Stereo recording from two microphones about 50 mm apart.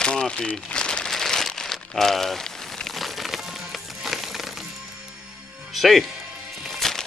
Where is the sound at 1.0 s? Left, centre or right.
Centre.